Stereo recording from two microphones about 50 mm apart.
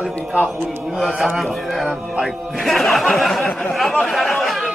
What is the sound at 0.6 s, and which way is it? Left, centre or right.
Speech, centre.